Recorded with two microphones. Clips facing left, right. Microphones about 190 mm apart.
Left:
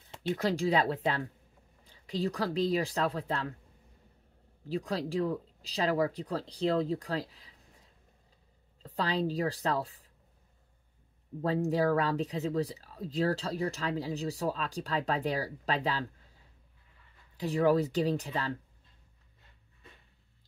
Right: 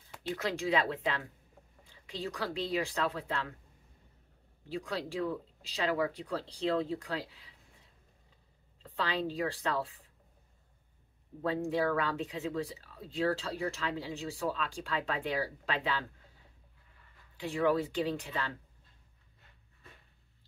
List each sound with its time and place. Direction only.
0.4 s speech: 35° left (ahead or behind)
4.6 s speech: 35° left (ahead or behind)
8.8 s speech: 40° left (ahead or behind)
11.4 s speech: 40° left (ahead or behind)
17.4 s speech: 40° left (ahead or behind)